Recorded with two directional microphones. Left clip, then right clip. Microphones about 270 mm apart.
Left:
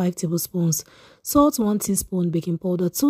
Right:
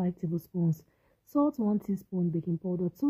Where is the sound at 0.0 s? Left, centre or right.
Centre.